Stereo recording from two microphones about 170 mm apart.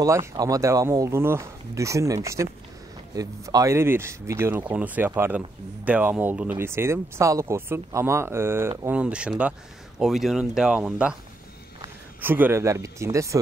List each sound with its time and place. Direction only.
0.0 s speech: 20° right (ahead or behind)
12.2 s speech: 10° right (ahead or behind)